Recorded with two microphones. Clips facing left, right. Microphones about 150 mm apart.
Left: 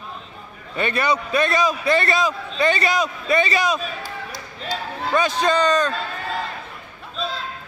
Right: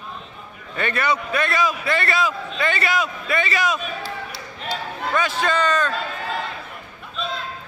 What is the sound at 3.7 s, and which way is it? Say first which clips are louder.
Basketball bounce: left 1 dB; 40° left (ahead or behind).